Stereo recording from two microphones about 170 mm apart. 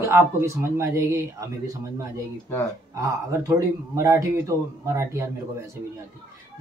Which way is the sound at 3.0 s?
20° right (ahead or behind).